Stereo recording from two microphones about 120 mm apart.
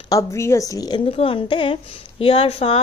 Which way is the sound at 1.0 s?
50° left (ahead or behind).